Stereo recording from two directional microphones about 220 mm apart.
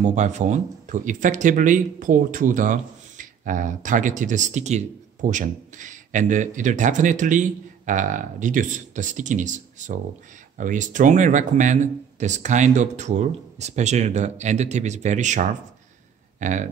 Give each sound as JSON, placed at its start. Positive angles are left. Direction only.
{"t": 0.0, "sound": "speech", "side_deg": -30}